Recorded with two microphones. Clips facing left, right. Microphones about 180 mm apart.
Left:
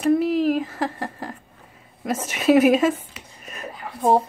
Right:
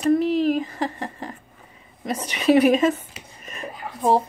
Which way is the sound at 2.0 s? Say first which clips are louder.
Left 1 dB; 5° left (ahead or behind).